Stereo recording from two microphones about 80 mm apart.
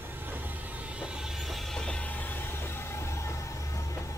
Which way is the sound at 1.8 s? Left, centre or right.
Centre.